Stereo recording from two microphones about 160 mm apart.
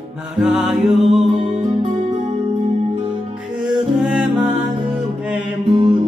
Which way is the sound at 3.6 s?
5° right (ahead or behind).